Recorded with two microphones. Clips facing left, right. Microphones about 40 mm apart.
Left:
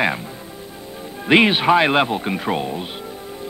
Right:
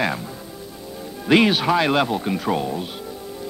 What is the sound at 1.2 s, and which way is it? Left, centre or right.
A man's voice, left.